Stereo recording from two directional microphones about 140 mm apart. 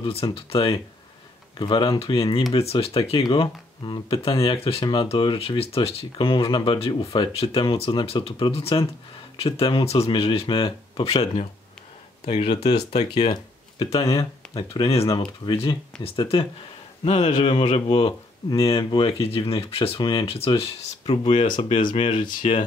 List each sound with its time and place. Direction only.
0.0 s speech: 40° left (ahead or behind)
12.3 s speech: 35° left (ahead or behind)
13.1 s a sound: 35° left (ahead or behind)
14.1 s speech: 40° left (ahead or behind)